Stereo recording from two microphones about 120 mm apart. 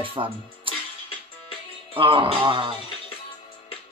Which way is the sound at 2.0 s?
45° right (ahead or behind).